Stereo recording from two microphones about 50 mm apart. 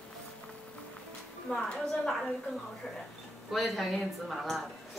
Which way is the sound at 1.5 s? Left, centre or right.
Centre.